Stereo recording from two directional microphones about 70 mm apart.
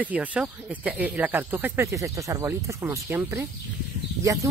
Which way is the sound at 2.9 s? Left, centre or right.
Right.